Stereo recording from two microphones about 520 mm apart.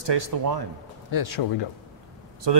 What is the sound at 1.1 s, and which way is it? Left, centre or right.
Speech, left.